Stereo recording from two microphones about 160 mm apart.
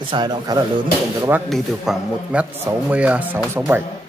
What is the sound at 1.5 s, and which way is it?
A man's voice, centre (ahead or behind).